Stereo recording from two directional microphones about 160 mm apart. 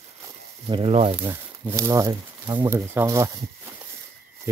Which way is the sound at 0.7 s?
35° right (ahead or behind).